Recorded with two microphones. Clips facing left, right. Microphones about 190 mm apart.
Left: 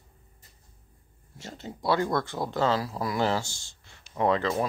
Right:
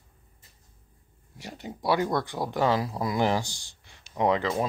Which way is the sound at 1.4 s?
15° right (ahead or behind).